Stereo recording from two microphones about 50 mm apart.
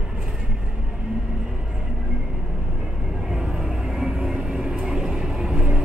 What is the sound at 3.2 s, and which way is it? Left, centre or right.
Vehicle, centre.